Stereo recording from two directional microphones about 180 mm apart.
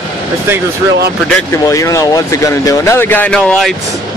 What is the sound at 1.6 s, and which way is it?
Speech, 15° left (ahead or behind).